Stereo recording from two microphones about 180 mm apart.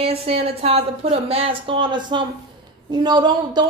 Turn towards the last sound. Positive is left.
turn(degrees=-25)  # may be behind; listen again after turning